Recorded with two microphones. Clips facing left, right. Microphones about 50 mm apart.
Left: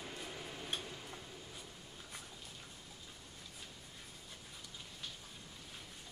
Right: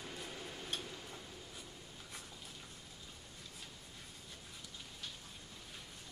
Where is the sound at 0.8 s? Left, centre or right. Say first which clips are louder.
Even; centre.